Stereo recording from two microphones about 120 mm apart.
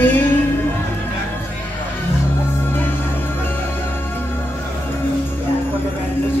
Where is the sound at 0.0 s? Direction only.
15° left (ahead or behind).